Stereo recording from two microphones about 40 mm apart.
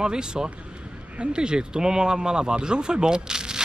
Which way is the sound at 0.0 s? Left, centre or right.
Centre.